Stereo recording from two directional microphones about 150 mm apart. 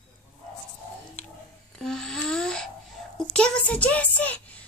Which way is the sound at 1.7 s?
5° left (ahead or behind).